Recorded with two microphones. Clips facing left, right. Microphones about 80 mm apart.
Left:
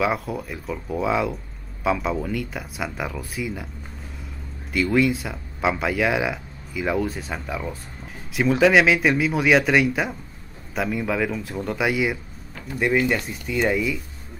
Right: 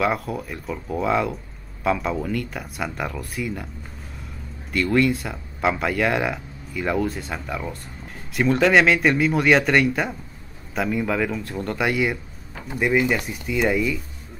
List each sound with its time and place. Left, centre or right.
0.0 s speech: centre
4.7 s speech: centre
12.7 s speech: centre